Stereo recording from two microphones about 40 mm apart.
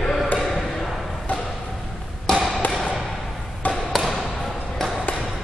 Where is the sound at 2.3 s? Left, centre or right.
Centre.